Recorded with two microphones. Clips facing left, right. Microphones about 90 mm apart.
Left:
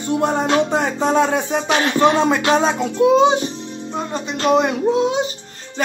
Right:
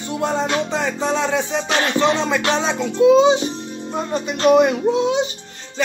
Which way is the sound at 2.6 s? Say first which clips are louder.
Right 1 dB; 55° left (ahead or behind).